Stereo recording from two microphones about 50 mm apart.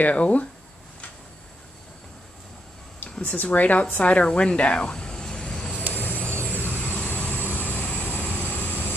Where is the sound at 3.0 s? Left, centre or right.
Left.